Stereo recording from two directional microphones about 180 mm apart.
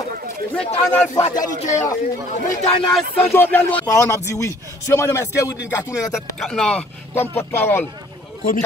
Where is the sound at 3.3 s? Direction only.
10° left (ahead or behind).